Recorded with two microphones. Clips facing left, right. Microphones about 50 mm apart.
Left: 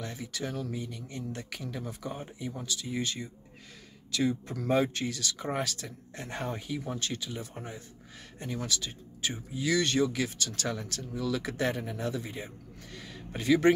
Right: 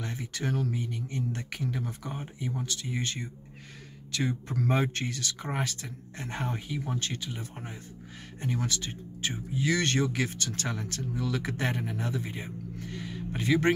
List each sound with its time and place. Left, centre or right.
0.0 s speech: right
2.6 s speech: right
4.6 s speech: right
7.0 s speech: right
8.4 s speech: right
9.8 s speech: right; by 13.4 s centre
13.4 s speech: right